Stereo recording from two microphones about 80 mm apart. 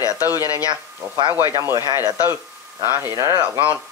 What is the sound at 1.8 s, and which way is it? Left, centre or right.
Speech, left.